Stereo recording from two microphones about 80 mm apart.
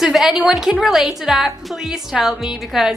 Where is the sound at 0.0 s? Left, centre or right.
Centre.